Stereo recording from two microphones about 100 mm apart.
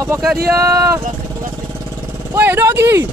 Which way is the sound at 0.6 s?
30° right (ahead or behind).